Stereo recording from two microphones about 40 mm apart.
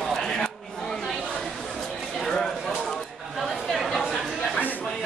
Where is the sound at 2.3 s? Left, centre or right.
Centre.